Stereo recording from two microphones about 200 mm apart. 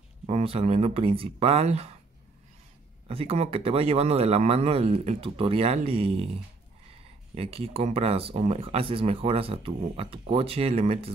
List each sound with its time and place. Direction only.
0.3 s speech: 30° right (ahead or behind)
3.1 s speech: 30° right (ahead or behind)
7.3 s speech: 30° right (ahead or behind)